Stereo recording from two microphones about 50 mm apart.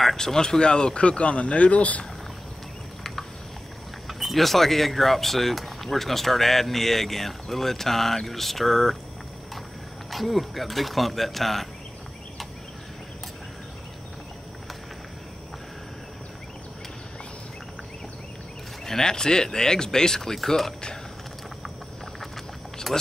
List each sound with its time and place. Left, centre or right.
0.0 s speech: centre; by 2.0 s left
4.1 s speech: centre
10.1 s speech: centre
18.9 s speech: centre
22.9 s speech: centre